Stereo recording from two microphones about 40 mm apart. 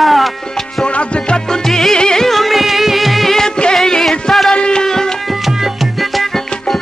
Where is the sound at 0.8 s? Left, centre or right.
Left.